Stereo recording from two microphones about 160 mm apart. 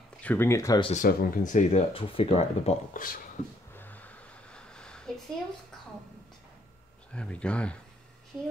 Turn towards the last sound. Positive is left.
turn(degrees=5)  # may be behind; listen again after turning